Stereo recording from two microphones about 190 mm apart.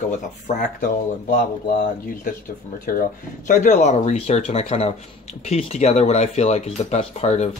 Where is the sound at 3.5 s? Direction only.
40° left (ahead or behind).